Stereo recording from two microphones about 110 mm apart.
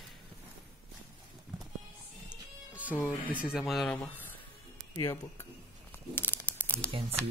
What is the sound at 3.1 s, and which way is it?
Speech, 5° right (ahead or behind).